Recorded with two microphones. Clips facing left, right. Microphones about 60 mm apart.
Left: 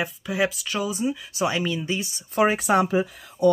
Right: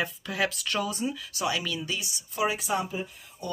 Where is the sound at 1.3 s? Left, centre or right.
Left.